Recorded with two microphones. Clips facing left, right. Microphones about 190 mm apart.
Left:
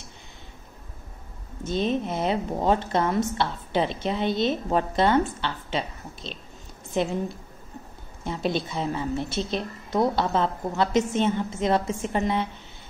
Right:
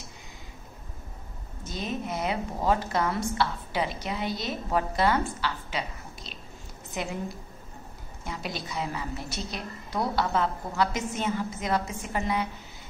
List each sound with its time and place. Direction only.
1.6 s a woman's voice: 25° left (ahead or behind)